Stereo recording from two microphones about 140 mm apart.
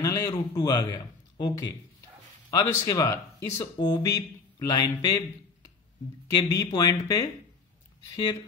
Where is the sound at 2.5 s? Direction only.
25° left (ahead or behind).